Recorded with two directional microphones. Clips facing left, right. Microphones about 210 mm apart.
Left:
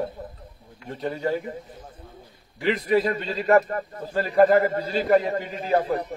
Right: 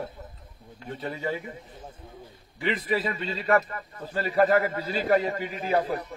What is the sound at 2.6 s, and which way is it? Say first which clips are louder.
Speech: left 6 dB; centre (ahead or behind).